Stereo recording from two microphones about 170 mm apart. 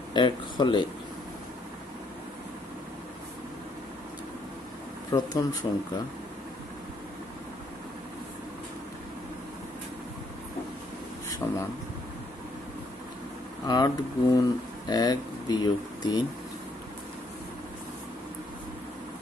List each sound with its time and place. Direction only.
0.1 s speech: 25° left (ahead or behind)
5.1 s speech: 20° left (ahead or behind)
11.4 s speech: 10° left (ahead or behind)
13.7 s speech: 25° left (ahead or behind)